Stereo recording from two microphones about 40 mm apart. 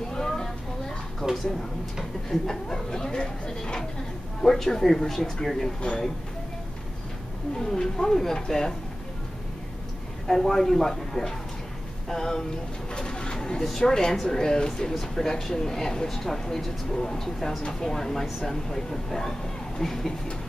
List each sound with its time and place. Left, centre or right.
0.1 s a sound: centre
1.2 s a sound: centre
2.4 s speech: centre
4.4 s speech: centre
5.8 s speech: left
7.5 s speech: centre
10.2 s speech: centre
12.9 s pigeon: left
13.7 s speech: centre